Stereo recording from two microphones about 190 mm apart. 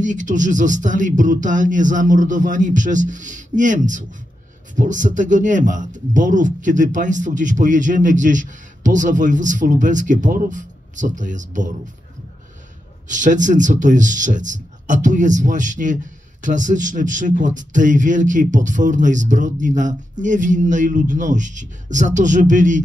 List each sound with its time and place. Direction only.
0.0 s speech: 40° right (ahead or behind)
13.1 s speech: 40° right (ahead or behind)